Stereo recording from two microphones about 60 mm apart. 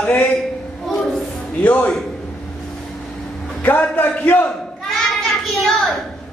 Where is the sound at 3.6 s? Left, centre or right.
Left.